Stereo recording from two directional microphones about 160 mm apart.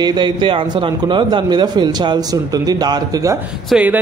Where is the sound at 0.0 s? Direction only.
30° right (ahead or behind).